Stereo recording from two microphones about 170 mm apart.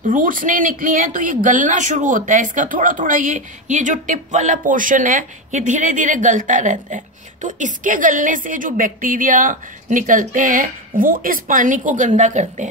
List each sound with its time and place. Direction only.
0.1 s speech: 55° right (ahead or behind)